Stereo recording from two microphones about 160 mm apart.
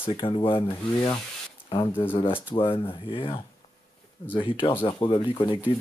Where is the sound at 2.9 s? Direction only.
35° left (ahead or behind).